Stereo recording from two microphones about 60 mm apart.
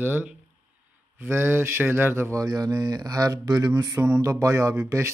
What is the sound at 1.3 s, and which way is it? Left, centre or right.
A man's voice, right.